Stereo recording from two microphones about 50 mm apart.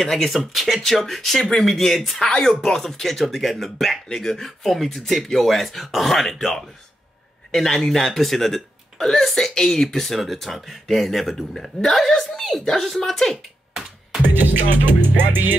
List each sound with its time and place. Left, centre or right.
0.0 s speech: centre
15.0 s music: right